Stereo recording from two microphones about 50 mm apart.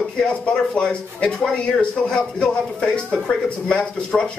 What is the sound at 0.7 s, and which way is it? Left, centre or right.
Speech, left.